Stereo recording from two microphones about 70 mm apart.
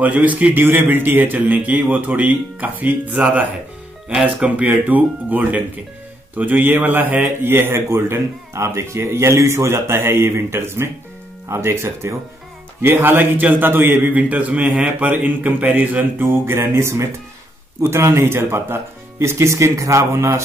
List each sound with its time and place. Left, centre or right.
0.0 s a man's voice: right